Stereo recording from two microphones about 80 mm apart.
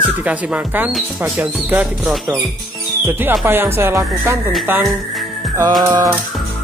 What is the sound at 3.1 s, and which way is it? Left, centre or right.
Speech, right.